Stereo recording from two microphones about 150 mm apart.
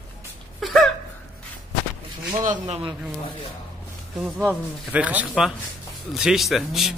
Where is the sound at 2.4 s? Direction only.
50° right (ahead or behind).